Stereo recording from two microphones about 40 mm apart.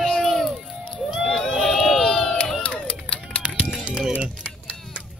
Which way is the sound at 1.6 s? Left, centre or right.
Centre.